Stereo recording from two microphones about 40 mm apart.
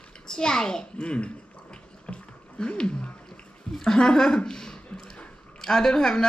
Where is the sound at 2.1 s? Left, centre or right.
Left.